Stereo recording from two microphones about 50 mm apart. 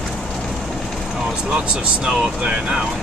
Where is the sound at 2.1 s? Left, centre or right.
Centre.